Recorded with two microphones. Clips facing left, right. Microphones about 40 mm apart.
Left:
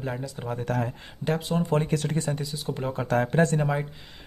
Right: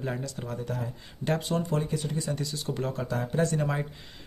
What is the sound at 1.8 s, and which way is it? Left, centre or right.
Speech, left.